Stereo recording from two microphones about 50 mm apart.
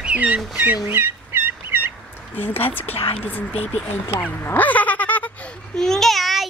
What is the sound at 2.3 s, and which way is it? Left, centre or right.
Speech, left.